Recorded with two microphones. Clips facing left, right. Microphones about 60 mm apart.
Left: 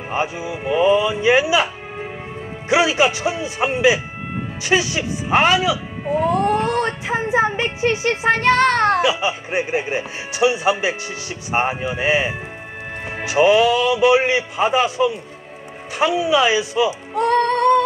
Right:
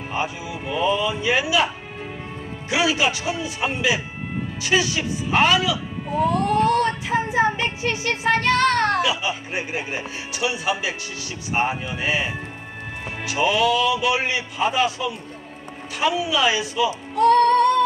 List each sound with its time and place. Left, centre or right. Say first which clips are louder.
0.1 s speech: left 4 dB; left
2.7 s speech: left 5 dB; left